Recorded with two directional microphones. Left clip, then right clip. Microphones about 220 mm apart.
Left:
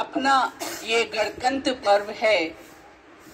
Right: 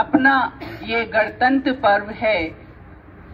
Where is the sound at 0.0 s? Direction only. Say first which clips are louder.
Right 5 dB; 40° left (ahead or behind).